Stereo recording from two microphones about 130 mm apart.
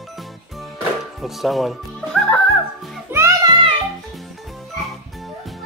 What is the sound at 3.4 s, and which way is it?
Music, 35° right (ahead or behind).